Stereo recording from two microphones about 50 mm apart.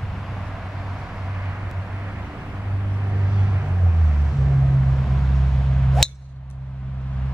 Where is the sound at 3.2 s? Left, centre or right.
Centre.